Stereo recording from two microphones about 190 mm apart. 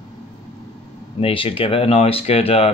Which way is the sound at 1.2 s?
30° left (ahead or behind).